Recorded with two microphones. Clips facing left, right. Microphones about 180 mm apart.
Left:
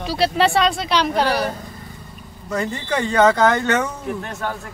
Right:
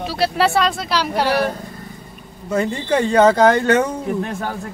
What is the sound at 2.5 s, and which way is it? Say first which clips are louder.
Speech: right 4 dB; 30° right (ahead or behind).